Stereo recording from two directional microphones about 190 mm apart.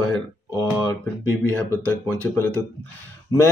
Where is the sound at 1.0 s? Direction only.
10° left (ahead or behind).